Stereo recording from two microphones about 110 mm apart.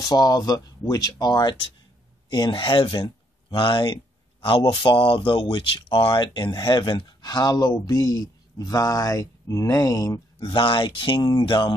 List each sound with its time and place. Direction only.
0.0 s speech: 35° left (ahead or behind)